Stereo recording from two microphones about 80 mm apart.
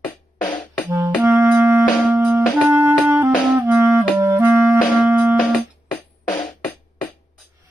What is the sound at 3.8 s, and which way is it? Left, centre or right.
Clarinet, right.